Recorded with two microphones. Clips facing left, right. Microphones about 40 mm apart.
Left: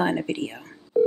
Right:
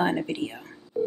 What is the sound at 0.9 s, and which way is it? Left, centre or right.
Telephone dialing, left.